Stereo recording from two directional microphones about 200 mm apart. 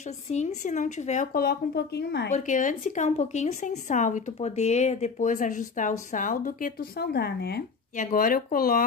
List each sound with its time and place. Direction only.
0.3 s speech: 35° left (ahead or behind); by 2.2 s 55° left (ahead or behind)
2.3 s speech: 40° left (ahead or behind)